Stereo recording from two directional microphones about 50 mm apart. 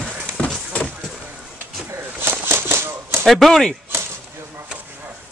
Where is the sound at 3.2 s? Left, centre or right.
Centre.